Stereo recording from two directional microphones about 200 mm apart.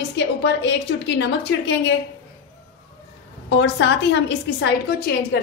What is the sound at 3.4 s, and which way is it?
A woman's voice, 65° left (ahead or behind).